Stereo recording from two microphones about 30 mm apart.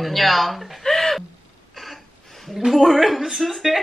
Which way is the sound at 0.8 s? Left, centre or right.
Centre.